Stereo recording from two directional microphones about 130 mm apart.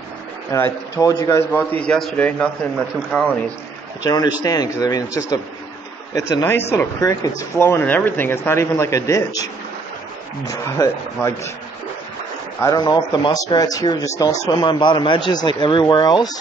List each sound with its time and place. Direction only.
0.5 s speech: 25° left (ahead or behind)
1.5 s a man's voice: 15° left (ahead or behind)
4.0 s speech: 30° left (ahead or behind)
10.8 s speech: 20° left (ahead or behind)
12.7 s a man's voice: 35° left (ahead or behind)